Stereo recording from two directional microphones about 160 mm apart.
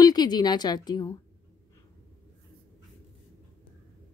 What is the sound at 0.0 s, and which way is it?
A woman's voice, 25° left (ahead or behind).